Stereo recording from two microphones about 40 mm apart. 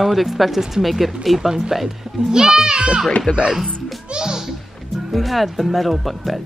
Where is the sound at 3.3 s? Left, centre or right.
Left.